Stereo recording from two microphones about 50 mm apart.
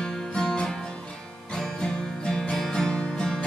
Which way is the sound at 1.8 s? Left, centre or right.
Centre.